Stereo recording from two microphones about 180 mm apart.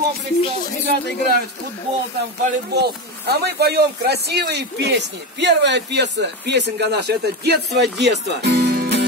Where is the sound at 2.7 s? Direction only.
65° right (ahead or behind).